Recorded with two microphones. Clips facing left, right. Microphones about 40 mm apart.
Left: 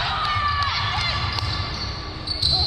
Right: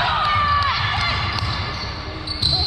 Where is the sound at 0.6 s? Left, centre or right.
Centre.